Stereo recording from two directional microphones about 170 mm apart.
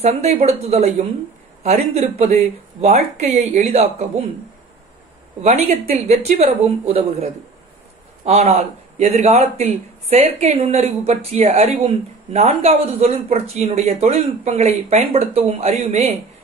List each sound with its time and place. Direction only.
0.4 s a man's voice: 40° right (ahead or behind)
5.4 s a man's voice: 40° right (ahead or behind)
8.3 s a man's voice: 40° right (ahead or behind)